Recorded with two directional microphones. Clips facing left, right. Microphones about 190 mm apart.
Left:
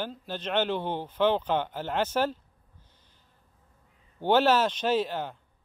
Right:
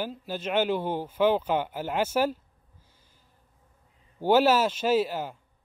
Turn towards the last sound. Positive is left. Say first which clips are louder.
# right 2 dB
turn(degrees=-10)  # may be behind; listen again after turning